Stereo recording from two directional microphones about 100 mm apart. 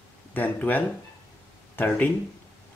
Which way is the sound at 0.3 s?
15° left (ahead or behind).